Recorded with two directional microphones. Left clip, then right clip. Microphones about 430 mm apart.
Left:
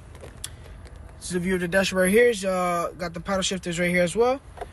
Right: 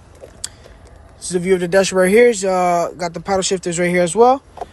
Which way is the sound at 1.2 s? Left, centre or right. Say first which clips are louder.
Right 10 dB; centre.